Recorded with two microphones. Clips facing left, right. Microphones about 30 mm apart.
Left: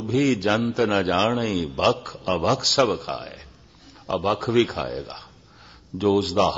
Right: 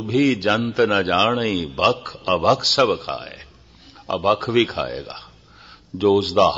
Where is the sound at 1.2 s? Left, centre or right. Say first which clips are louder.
Right 3 dB; right.